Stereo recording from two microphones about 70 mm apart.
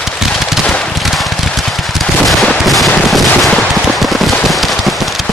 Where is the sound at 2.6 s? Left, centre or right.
Centre.